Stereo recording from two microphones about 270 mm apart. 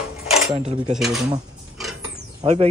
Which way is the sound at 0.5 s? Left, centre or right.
Right.